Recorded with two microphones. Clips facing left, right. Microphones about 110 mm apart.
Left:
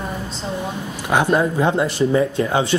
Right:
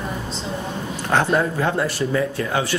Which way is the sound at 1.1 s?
15° left (ahead or behind).